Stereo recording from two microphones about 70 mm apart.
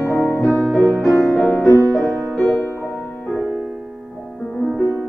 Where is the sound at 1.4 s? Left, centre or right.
Left.